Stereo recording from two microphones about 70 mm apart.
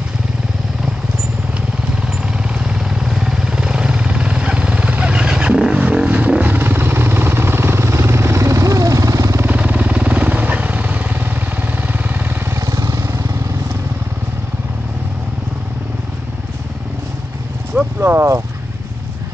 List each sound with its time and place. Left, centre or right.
2.6 s vehicle: centre; by 9.5 s right
9.5 s vehicle: right
12.5 s vehicle: right
18.0 s vehicle: right